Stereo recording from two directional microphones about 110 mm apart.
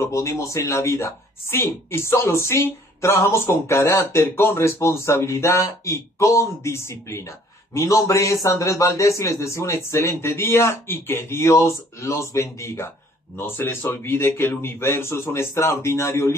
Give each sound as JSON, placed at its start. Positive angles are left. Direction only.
{"t": 0.0, "sound": "speech", "side_deg": 25}